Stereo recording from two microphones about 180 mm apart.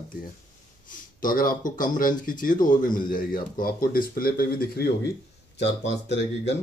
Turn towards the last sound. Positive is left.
turn(degrees=75)  # may be behind; listen again after turning